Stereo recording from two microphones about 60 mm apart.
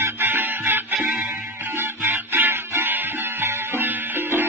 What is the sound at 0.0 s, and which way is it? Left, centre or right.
Music, right.